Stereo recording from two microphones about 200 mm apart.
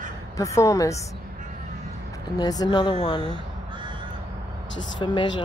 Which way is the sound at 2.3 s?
20° left (ahead or behind).